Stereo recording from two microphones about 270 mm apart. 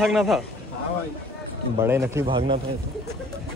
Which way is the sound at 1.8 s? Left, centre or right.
Centre.